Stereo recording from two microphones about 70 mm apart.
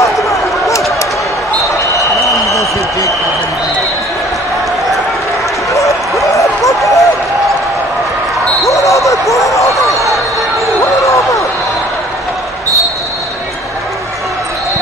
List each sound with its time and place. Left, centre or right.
0.0 s a sound: left
2.2 s a sound: left
5.7 s dog: left
6.2 s basketball bounce: left
6.8 s run: centre
8.6 s basketball bounce: left
11.1 s basketball bounce: left